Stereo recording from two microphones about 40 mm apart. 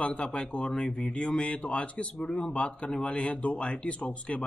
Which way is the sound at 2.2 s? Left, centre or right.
Left.